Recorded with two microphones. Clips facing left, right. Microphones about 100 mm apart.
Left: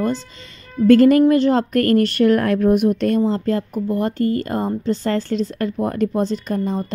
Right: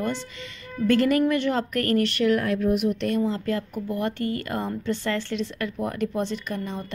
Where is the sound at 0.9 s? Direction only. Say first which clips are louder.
Left 9 dB; 35° left (ahead or behind).